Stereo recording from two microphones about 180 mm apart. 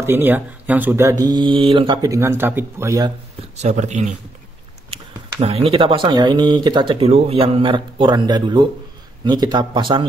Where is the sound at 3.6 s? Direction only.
40° right (ahead or behind).